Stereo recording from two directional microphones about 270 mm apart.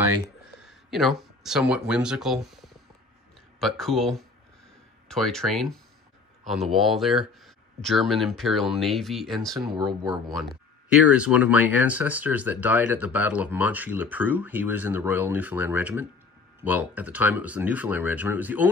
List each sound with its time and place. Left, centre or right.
0.6 s speech: centre
9.8 s speech: centre
11.1 s speech: centre